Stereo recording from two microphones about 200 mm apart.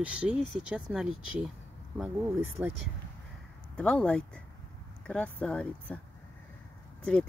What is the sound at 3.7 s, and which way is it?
Speech, 5° left (ahead or behind).